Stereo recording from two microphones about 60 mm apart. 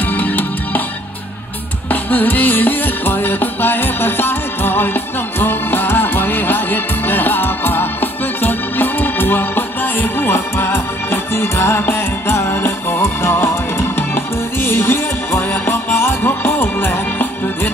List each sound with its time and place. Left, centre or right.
0.0 s music: left
1.9 s music: left